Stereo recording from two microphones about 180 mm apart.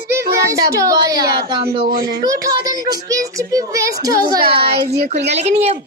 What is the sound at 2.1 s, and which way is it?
A child's voice, 20° right (ahead or behind).